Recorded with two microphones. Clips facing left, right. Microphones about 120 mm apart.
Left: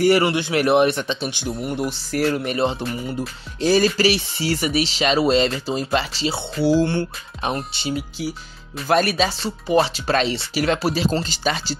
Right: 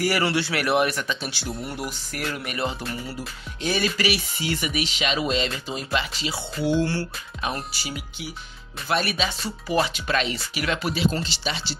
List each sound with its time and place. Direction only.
0.0 s speech: 20° left (ahead or behind)
1.9 s speech: 35° left (ahead or behind)
3.6 s speech: 35° left (ahead or behind)
8.8 s speech: 40° left (ahead or behind)